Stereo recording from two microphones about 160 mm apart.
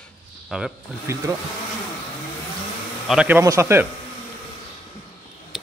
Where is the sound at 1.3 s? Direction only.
25° right (ahead or behind).